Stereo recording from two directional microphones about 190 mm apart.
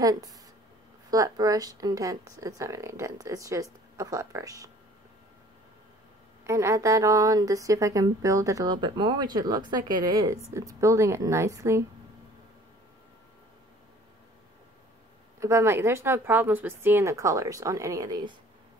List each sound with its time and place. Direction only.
0.0 s a woman's voice: 20° right (ahead or behind)
6.4 s a woman's voice: 15° right (ahead or behind)
15.4 s a woman's voice: 15° right (ahead or behind)